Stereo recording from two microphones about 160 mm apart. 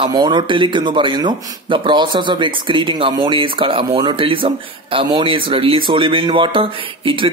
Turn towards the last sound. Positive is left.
turn(degrees=-30)  # may be behind; listen again after turning